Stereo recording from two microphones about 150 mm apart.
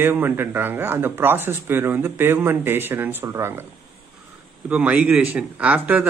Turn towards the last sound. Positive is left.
turn(degrees=-10)  # may be behind; listen again after turning